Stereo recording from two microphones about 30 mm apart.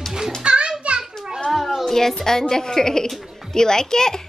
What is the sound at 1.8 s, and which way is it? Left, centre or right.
A woman's voice, centre.